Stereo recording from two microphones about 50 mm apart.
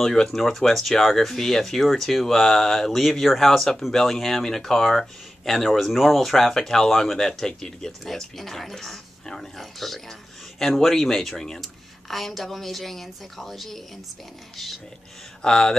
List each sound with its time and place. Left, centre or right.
0.0 s speech: centre
15.4 s speech: centre